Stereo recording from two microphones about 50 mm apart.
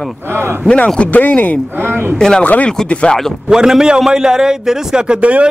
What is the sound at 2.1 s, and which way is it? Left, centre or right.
Speech, centre.